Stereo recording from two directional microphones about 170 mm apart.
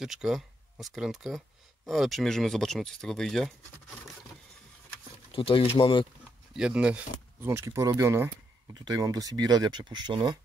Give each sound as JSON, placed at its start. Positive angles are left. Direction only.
{"t": 0.0, "sound": "speech", "side_deg": 0}
{"t": 5.3, "sound": "speech", "side_deg": 30}
{"t": 6.5, "sound": "speech", "side_deg": -5}